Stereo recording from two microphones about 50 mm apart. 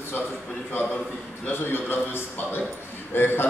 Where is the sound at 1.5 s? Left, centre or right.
Left.